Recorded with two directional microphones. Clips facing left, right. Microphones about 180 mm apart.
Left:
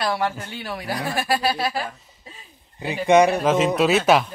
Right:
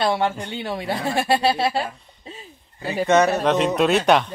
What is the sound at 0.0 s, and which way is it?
Speech, 25° right (ahead or behind).